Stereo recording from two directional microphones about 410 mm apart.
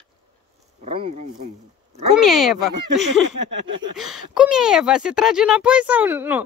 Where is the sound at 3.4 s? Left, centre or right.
Right.